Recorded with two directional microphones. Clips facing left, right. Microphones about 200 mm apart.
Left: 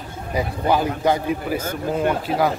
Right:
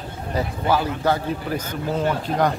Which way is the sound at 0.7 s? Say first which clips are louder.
Left 2 dB; 15° left (ahead or behind).